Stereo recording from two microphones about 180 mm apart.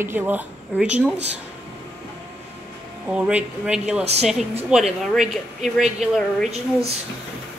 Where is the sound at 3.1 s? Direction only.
5° right (ahead or behind).